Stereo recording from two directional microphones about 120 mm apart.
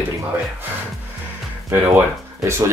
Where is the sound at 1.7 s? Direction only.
20° right (ahead or behind).